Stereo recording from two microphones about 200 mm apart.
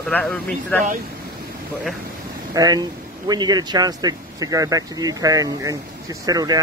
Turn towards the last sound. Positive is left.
turn(degrees=-20)  # may be behind; listen again after turning